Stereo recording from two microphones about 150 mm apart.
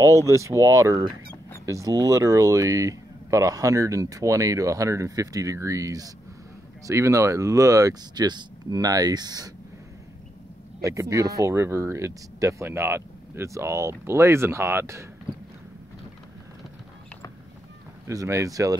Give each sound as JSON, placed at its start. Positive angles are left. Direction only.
{"t": 0.0, "sound": "speech", "side_deg": -20}
{"t": 10.8, "sound": "speech", "side_deg": -20}
{"t": 18.0, "sound": "speech", "side_deg": -20}